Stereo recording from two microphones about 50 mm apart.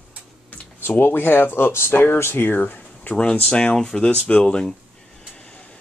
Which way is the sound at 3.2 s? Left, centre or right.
Centre.